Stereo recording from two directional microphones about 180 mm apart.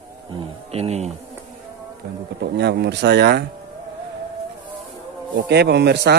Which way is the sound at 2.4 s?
70° right (ahead or behind).